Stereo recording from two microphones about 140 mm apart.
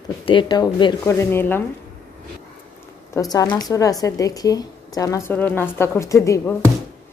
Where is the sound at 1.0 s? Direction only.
15° left (ahead or behind).